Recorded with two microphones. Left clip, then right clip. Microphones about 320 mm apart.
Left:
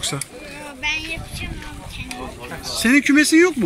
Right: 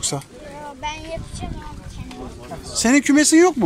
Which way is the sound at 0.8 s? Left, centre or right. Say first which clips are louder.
Left 6 dB; right.